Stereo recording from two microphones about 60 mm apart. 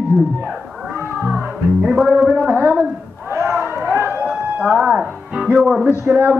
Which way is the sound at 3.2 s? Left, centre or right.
Right.